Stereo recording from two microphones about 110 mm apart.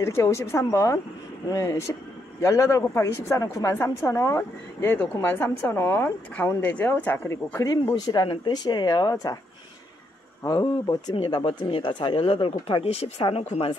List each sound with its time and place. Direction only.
0.0 s speech: 25° left (ahead or behind)
7.9 s speech: 45° left (ahead or behind)
10.4 s speech: 35° left (ahead or behind)
11.1 s speech: 50° left (ahead or behind); by 13.7 s 65° left (ahead or behind)